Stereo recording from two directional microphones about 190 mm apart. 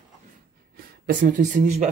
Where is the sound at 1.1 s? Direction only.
45° right (ahead or behind).